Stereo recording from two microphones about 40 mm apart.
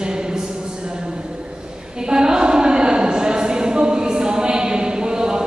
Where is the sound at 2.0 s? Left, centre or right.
Centre.